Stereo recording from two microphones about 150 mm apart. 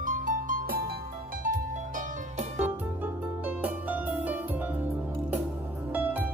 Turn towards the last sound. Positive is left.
turn(degrees=-10)  # may be behind; listen again after turning